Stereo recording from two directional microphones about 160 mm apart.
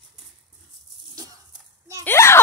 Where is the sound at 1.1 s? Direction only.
20° right (ahead or behind).